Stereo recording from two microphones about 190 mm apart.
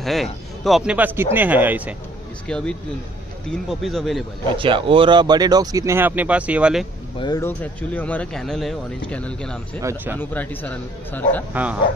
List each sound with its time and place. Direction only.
0.0 s speech: centre (ahead or behind)
2.4 s speech: 5° left (ahead or behind)
4.5 s speech: 25° right (ahead or behind); by 6.9 s 5° right (ahead or behind)
7.2 s speech: 20° left (ahead or behind)
7.4 s speech: 10° left (ahead or behind)
9.8 s speech: 15° right (ahead or behind)
10.1 s speech: 10° left (ahead or behind)